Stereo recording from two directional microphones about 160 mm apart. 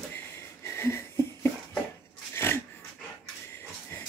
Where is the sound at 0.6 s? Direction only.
15° left (ahead or behind).